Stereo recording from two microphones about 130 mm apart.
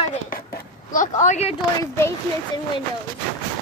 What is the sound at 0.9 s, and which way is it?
Speech, 75° left (ahead or behind).